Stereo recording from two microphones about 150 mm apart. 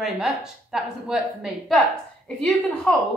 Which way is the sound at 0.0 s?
5° right (ahead or behind).